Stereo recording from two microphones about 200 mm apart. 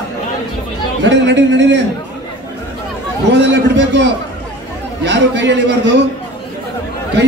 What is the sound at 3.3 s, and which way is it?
A man's voice, 60° right (ahead or behind).